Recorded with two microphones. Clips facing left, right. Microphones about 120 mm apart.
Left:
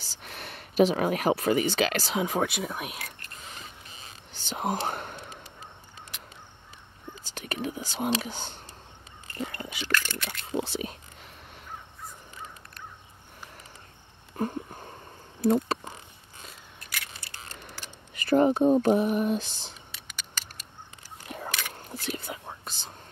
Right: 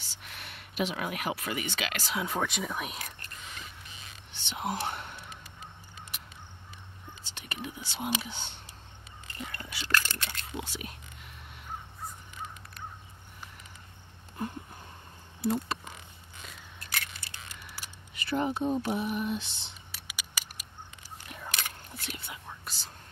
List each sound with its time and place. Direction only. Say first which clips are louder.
0.0 s speech: left 5 dB; 35° left (ahead or behind)
2.1 s speech: left 2 dB; 15° left (ahead or behind)
3.3 s whispering: left 2 dB; 35° left (ahead or behind)
7.2 s speech: left 7 dB; 45° left (ahead or behind)
9.4 s whispering: left 7 dB; 30° left (ahead or behind)
9.8 s a sound: even; 35° right (ahead or behind)
10.5 s speech: left 12 dB; 30° left (ahead or behind)
15.4 s a sound: left 6 dB; 45° left (ahead or behind)
18.1 s speech: left 9 dB; 45° left (ahead or behind)
19.9 s a sound: left 1 dB; 5° right (ahead or behind)
21.3 s a sound: left 8 dB; 40° left (ahead or behind)
21.9 s speech: left 11 dB; 40° left (ahead or behind)
22.7 s speech: left 3 dB; 20° left (ahead or behind)